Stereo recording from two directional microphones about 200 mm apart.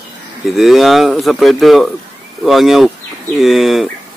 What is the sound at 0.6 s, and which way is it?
A man's voice, centre (ahead or behind).